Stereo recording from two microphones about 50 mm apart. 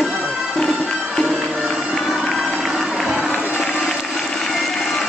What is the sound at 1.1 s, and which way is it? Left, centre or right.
Music, centre.